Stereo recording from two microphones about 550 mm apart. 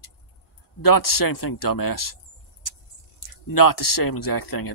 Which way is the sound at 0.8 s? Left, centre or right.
Left.